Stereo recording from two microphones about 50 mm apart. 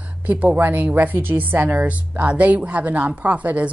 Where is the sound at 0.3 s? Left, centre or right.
Right.